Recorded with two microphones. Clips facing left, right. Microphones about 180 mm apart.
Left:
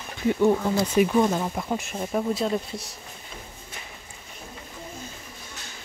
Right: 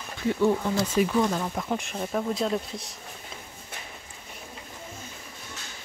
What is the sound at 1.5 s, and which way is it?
Speech, 10° left (ahead or behind).